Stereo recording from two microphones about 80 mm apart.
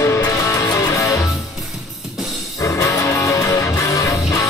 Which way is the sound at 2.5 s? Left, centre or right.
Left.